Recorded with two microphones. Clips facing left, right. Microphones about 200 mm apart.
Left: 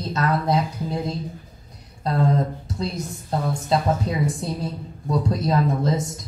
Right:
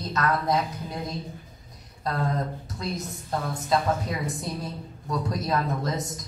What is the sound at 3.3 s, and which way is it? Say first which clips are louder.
Speech: left 3 dB; 25° left (ahead or behind).